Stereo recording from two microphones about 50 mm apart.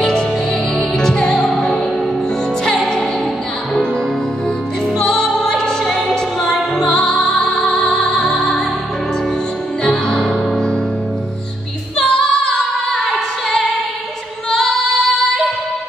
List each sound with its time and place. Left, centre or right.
0.7 s music: centre
4.9 s music: centre
9.8 s music: centre
12.1 s female singing: centre
12.9 s female singing: centre